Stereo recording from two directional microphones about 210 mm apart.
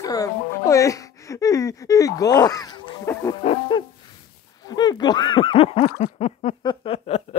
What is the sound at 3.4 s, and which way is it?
Owl, 25° left (ahead or behind).